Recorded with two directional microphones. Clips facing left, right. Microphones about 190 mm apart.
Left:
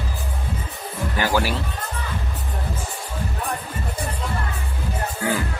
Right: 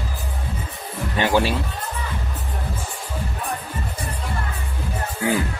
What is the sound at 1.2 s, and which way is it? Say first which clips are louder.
Speech: right 3 dB; 25° right (ahead or behind).